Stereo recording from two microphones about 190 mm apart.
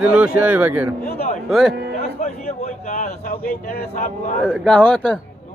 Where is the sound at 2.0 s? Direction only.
35° left (ahead or behind).